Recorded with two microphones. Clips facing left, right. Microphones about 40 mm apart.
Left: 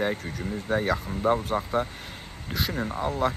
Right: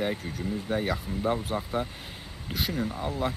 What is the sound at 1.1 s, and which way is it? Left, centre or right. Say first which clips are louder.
Speech: even; left.